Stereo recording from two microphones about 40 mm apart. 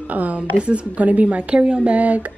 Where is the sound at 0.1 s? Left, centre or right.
Right.